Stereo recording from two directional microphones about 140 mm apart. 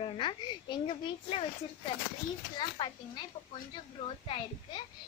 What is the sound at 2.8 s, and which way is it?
Speech, 35° left (ahead or behind).